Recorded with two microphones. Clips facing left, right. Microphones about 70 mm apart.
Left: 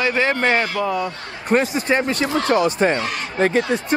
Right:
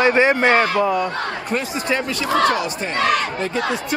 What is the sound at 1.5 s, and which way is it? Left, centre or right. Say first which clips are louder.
Speech: left 6 dB; left.